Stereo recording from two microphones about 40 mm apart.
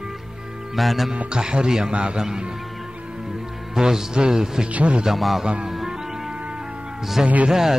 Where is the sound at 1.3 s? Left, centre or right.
Right.